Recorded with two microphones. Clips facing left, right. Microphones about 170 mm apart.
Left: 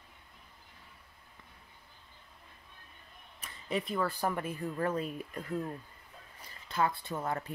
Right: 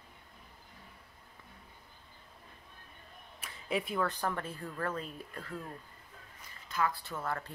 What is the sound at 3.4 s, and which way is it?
Speech, 5° right (ahead or behind).